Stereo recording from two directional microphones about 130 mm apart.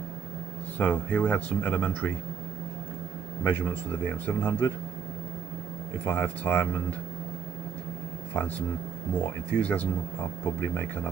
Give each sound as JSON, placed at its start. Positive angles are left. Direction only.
{"t": 0.7, "sound": "speech", "side_deg": 10}
{"t": 3.4, "sound": "speech", "side_deg": 15}
{"t": 6.0, "sound": "speech", "side_deg": 15}
{"t": 8.3, "sound": "speech", "side_deg": 15}